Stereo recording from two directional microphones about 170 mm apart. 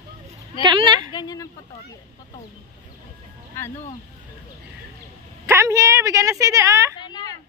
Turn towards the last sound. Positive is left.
turn(degrees=25)  # may be behind; listen again after turning